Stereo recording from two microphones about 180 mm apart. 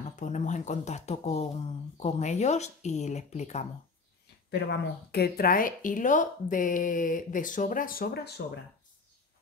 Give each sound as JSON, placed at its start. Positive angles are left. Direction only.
{"t": 0.1, "sound": "speech", "side_deg": 40}
{"t": 4.5, "sound": "speech", "side_deg": 70}